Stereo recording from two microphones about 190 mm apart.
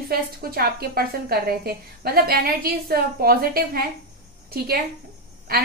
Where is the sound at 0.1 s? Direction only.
50° right (ahead or behind).